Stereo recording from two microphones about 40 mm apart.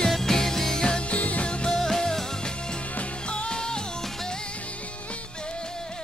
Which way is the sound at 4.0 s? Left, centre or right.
Centre.